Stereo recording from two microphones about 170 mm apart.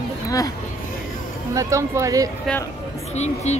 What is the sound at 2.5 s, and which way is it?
Speech, 5° left (ahead or behind).